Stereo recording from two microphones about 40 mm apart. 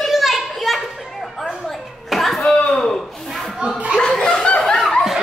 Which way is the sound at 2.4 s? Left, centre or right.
Centre.